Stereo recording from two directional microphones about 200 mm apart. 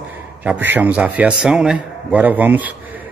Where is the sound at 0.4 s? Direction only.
10° right (ahead or behind).